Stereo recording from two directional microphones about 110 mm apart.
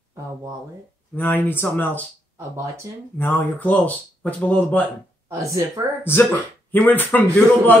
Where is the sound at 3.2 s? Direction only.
20° left (ahead or behind).